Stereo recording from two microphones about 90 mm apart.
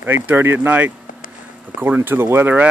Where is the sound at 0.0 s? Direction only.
25° right (ahead or behind).